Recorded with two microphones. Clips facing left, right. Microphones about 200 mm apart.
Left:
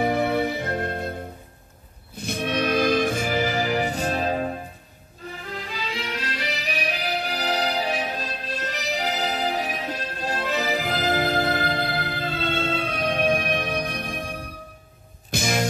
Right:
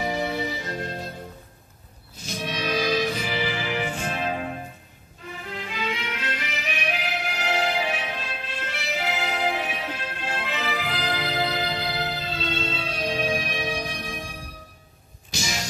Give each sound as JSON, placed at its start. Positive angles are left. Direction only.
{"t": 0.0, "sound": "music", "side_deg": 55}